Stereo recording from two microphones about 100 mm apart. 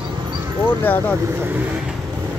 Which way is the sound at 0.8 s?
20° left (ahead or behind).